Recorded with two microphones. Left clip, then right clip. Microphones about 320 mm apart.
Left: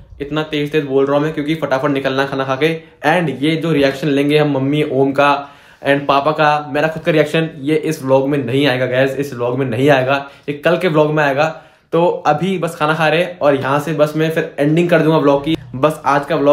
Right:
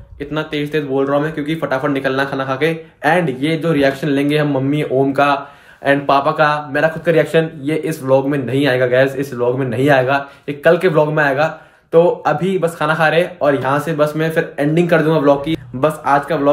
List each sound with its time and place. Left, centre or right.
0.2 s speech: centre